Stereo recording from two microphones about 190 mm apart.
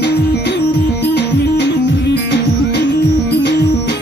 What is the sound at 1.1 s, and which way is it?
Music, 60° left (ahead or behind).